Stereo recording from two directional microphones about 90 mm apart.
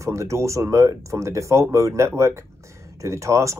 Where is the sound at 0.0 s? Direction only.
35° right (ahead or behind).